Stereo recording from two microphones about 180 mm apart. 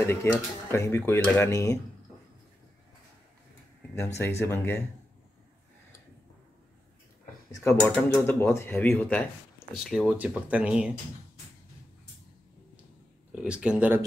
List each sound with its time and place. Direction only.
0.0 s speech: 10° left (ahead or behind)
4.4 s speech: 15° left (ahead or behind)
7.5 s speech: 10° left (ahead or behind)
9.8 s speech: 5° right (ahead or behind)
13.3 s speech: 5° right (ahead or behind)